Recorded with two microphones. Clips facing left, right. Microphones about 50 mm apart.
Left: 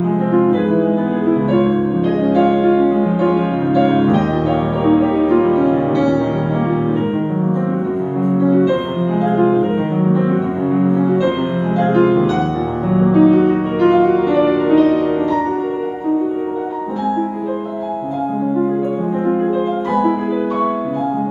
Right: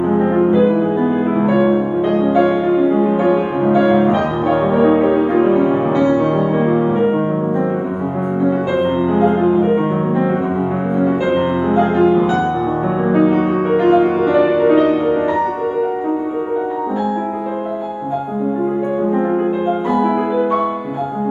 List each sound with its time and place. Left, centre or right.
0.3 s music: centre
1.2 s music: right
3.8 s music: right
4.7 s music: right
9.1 s music: centre
11.7 s music: centre